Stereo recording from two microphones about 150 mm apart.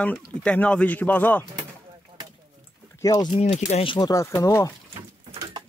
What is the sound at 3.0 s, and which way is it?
Speech, 25° left (ahead or behind).